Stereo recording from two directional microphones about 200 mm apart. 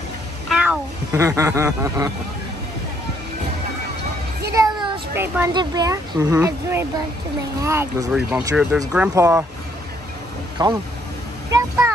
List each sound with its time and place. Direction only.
0.5 s speech: 5° right (ahead or behind)
4.6 s child singing: 25° right (ahead or behind)
5.1 s speech: 10° right (ahead or behind)
10.6 s speech: 20° right (ahead or behind)